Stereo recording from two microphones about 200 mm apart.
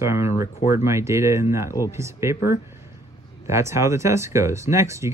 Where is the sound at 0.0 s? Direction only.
15° right (ahead or behind).